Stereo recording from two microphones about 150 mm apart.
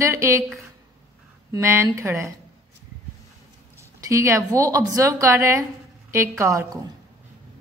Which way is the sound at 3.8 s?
20° right (ahead or behind).